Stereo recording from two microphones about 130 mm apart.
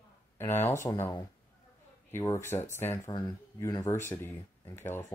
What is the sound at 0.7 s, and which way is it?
Speech, 25° left (ahead or behind).